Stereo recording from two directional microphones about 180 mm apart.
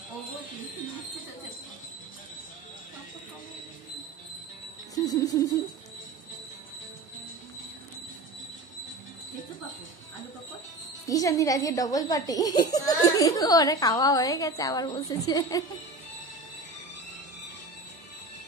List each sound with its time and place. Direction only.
4.9 s music: 20° left (ahead or behind)
11.1 s speech: 20° left (ahead or behind)